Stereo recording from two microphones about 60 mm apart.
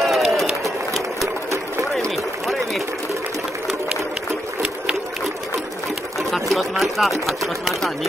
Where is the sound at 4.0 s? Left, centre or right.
Right.